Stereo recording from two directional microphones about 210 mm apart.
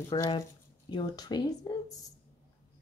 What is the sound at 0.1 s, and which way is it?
Speech, 15° left (ahead or behind).